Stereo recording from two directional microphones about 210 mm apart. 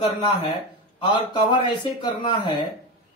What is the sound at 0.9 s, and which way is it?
Speech, 20° left (ahead or behind).